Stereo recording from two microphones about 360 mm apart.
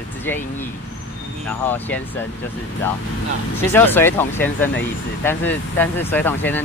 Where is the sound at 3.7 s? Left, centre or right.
Centre.